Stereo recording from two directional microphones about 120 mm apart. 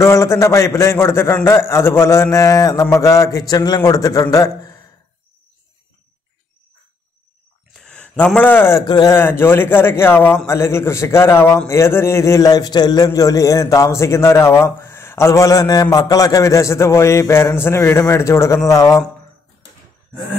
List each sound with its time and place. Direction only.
0.0 s a man's voice: 25° left (ahead or behind)
7.7 s a sound: 5° left (ahead or behind)
8.8 s speech: 35° left (ahead or behind)
9.1 s a man's voice: 20° left (ahead or behind)